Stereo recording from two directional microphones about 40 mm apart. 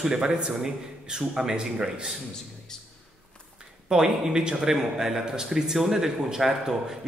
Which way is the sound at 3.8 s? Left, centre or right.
Centre.